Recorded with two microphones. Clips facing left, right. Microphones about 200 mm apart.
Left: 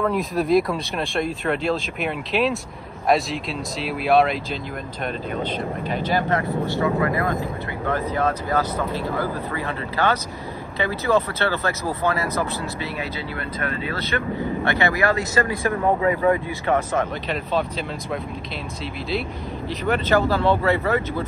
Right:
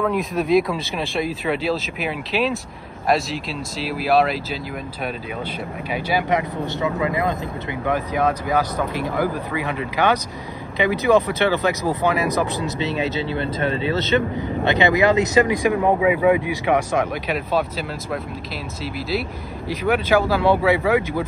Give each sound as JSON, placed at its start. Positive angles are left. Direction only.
{"t": 0.0, "sound": "speech", "side_deg": 0}
{"t": 19.7, "sound": "speech", "side_deg": -10}